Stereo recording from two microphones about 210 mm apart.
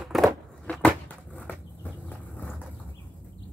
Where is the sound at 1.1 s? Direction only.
5° left (ahead or behind).